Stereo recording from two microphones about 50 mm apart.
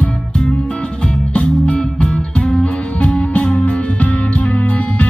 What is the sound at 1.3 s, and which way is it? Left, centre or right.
Music, left.